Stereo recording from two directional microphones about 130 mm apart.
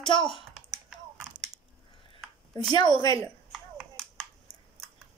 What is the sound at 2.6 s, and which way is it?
Speech, 35° left (ahead or behind).